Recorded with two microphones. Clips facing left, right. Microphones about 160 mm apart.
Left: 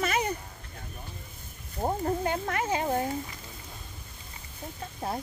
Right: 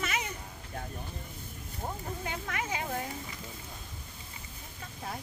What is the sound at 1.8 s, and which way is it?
Speech, 45° left (ahead or behind).